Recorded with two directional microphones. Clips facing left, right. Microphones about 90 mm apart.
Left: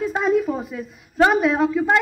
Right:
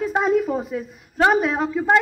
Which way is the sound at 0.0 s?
40° right (ahead or behind).